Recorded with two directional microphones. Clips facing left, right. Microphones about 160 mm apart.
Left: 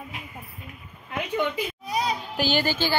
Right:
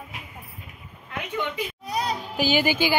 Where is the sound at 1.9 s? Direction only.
5° left (ahead or behind).